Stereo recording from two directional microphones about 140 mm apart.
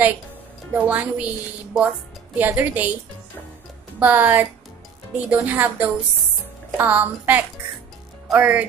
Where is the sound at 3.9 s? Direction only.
10° right (ahead or behind).